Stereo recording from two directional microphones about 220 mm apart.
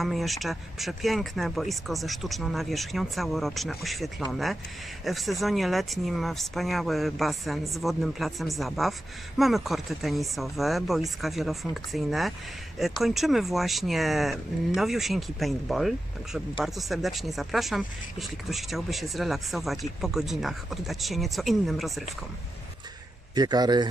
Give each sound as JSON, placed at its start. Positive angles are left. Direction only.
{"t": 0.0, "sound": "speech", "side_deg": 0}
{"t": 23.3, "sound": "speech", "side_deg": -20}